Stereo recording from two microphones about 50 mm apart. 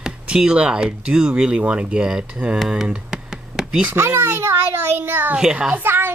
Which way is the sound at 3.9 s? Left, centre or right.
Right.